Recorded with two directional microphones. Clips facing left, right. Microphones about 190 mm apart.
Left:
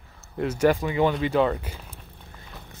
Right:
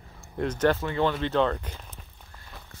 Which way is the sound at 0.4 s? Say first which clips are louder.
Left 3 dB; 10° left (ahead or behind).